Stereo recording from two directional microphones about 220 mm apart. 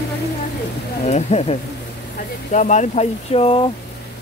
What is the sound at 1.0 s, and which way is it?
Speech, 30° left (ahead or behind).